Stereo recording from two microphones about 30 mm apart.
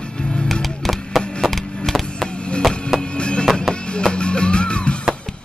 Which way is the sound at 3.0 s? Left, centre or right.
Left.